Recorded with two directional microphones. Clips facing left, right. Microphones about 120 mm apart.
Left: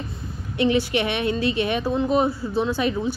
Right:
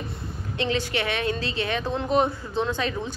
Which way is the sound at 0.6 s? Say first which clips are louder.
Left 6 dB; 15° left (ahead or behind).